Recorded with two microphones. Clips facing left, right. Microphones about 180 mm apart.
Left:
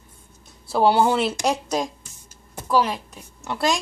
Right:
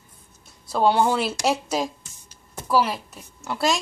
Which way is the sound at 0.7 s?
5° left (ahead or behind).